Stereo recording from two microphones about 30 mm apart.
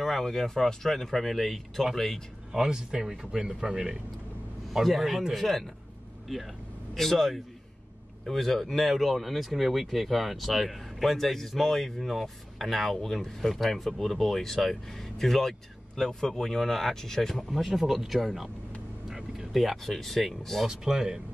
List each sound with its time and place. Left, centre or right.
0.0 s speech: centre
2.5 s speech: right
4.8 s speech: centre
20.6 s speech: centre